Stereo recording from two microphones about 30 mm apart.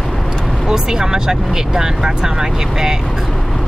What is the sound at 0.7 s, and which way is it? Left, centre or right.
Speech, right.